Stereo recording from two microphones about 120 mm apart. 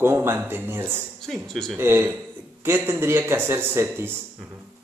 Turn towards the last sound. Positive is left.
turn(degrees=-20)  # may be behind; listen again after turning